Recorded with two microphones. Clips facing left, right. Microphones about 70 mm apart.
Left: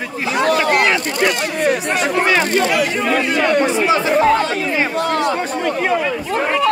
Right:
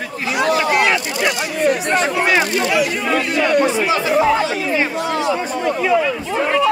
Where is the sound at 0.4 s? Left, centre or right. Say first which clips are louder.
Left 1 dB; left.